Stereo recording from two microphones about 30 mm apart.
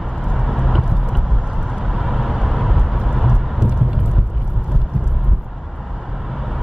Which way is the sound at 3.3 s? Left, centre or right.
Right.